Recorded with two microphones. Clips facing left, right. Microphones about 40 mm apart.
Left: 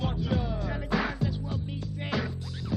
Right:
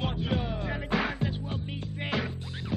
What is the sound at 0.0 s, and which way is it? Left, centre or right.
Music, right.